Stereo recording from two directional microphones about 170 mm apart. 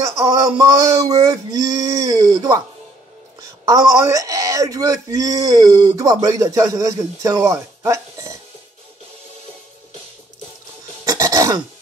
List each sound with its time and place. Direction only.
0.0 s male singing: 20° right (ahead or behind)
3.3 s speech: 20° right (ahead or behind)
11.1 s a sound: 20° right (ahead or behind)